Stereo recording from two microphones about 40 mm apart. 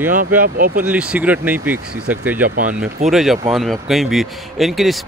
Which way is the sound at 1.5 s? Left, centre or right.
Right.